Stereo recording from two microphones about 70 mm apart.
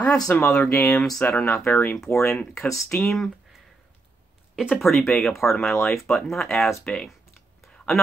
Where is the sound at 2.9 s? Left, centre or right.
Left.